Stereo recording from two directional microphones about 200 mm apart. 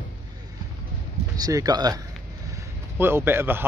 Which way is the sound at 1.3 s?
20° right (ahead or behind).